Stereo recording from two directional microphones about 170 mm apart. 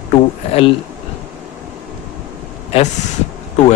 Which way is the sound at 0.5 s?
35° left (ahead or behind).